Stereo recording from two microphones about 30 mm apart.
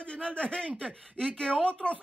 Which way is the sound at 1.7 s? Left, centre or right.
Left.